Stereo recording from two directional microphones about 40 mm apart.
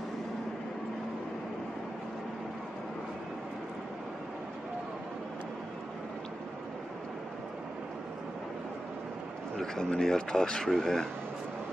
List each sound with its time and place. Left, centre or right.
9.6 s speech: centre